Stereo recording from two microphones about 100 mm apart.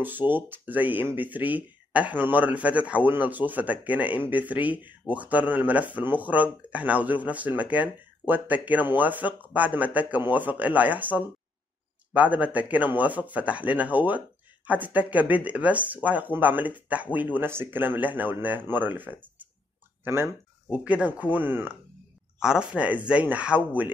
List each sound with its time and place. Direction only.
0.0 s speech: 20° right (ahead or behind)
22.4 s speech: 10° right (ahead or behind)